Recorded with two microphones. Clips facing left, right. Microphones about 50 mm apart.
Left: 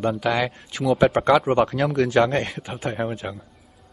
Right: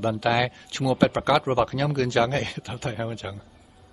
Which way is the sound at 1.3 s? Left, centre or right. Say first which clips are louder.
Left 4 dB; centre.